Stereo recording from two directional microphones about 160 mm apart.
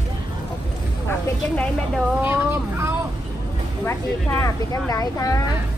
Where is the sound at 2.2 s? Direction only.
15° right (ahead or behind).